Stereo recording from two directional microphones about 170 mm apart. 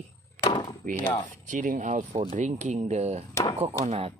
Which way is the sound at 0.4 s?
25° left (ahead or behind).